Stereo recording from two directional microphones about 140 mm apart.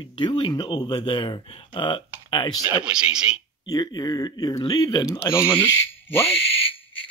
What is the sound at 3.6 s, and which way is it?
Speech, 30° left (ahead or behind).